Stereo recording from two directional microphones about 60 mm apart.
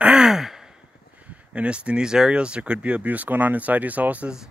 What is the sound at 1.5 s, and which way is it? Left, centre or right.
Speech, centre.